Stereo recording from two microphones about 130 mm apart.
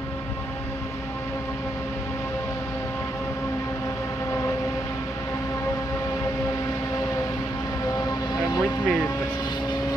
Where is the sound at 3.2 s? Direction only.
20° left (ahead or behind).